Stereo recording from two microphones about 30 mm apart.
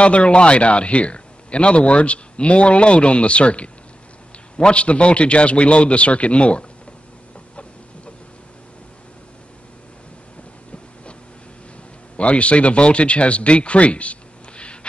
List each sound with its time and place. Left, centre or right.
0.0 s a man's voice: left
12.2 s speech: left
14.6 s a sound: left